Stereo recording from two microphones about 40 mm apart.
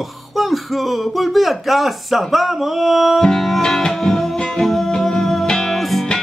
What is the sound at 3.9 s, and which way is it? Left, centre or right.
Music, centre.